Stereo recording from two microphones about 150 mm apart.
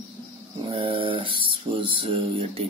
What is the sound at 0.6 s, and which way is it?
Mantra, 35° right (ahead or behind).